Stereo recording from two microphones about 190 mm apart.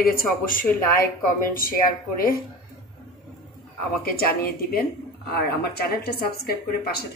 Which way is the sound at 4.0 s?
50° left (ahead or behind).